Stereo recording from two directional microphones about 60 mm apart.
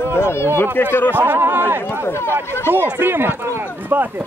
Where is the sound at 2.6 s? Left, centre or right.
Right.